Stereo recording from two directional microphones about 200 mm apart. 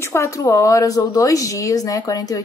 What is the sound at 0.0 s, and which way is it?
Speech, 15° left (ahead or behind).